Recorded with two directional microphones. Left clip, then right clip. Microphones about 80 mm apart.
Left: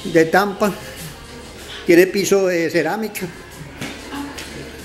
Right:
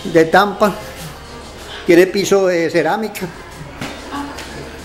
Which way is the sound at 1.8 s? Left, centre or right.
Centre.